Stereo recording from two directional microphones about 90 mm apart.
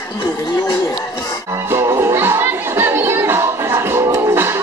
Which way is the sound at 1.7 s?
30° right (ahead or behind).